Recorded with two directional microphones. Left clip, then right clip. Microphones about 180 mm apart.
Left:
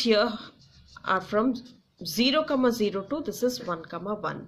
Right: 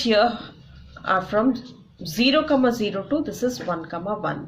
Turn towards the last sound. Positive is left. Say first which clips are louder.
# right 5 dB
turn(degrees=40)  # may be behind; listen again after turning